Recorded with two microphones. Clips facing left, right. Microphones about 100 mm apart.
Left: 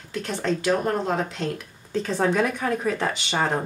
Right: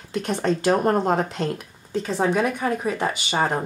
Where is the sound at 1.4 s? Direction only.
10° right (ahead or behind).